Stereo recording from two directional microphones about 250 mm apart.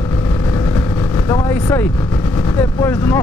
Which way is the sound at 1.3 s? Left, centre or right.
Centre.